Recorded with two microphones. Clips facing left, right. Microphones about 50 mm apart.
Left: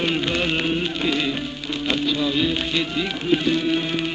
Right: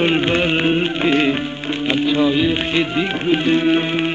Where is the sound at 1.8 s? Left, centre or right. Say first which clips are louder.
Right 6 dB; right.